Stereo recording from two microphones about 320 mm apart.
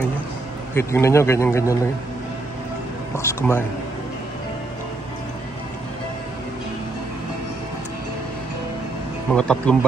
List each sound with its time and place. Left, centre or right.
0.7 s speech: centre
3.2 s speech: centre
9.3 s speech: centre